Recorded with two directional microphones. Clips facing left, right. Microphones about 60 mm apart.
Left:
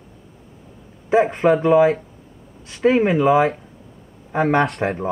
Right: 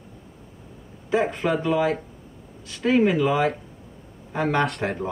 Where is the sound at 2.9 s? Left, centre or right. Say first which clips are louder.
Left 2 dB; left.